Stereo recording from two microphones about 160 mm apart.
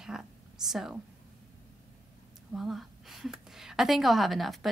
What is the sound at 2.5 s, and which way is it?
A woman's voice, centre (ahead or behind).